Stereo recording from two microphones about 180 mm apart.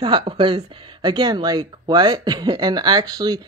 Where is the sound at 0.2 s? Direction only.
30° right (ahead or behind).